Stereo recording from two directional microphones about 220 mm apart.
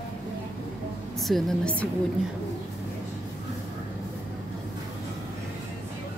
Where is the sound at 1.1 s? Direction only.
Centre (ahead or behind).